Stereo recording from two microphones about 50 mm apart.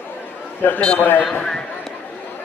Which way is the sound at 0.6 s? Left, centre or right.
Left.